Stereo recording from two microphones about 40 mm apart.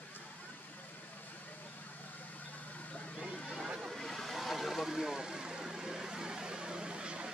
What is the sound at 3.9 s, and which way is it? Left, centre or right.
Vehicle, centre.